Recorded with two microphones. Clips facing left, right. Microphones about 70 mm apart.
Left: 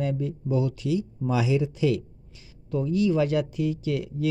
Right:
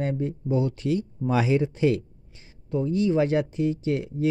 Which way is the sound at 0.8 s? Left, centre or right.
Right.